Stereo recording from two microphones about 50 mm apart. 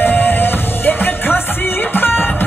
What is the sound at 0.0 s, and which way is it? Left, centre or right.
Music, left.